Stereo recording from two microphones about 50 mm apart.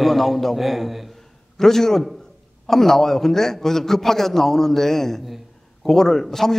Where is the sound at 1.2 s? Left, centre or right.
Centre.